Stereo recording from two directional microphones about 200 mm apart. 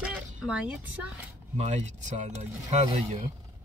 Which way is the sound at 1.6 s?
35° right (ahead or behind).